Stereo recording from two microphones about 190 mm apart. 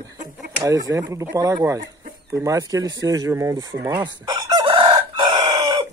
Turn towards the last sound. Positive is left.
turn(degrees=-20)  # may be behind; listen again after turning